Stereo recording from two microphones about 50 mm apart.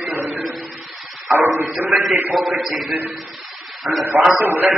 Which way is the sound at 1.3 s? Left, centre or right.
Right.